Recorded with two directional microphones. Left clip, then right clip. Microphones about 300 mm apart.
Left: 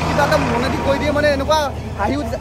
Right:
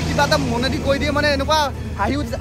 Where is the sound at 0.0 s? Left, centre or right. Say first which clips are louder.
Left 2 dB; centre.